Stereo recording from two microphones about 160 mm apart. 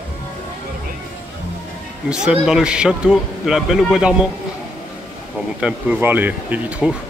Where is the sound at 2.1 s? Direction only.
5° right (ahead or behind).